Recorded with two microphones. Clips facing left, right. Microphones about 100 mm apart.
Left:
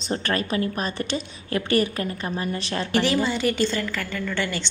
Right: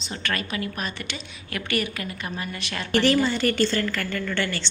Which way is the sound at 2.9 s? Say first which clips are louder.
Right 2 dB; 5° left (ahead or behind).